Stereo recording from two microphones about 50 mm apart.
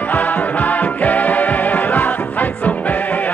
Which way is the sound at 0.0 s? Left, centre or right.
Left.